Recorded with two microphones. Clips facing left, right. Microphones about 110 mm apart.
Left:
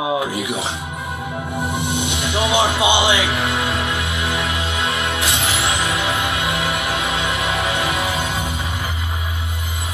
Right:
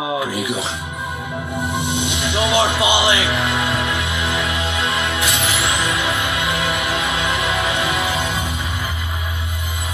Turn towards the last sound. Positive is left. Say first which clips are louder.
# even
turn(degrees=30)  # may be behind; listen again after turning